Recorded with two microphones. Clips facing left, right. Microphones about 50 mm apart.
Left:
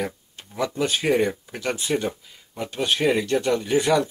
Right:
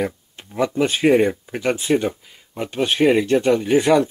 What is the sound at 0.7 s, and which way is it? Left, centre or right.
Speech, right.